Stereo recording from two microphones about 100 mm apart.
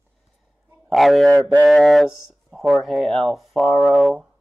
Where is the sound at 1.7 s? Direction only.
5° left (ahead or behind).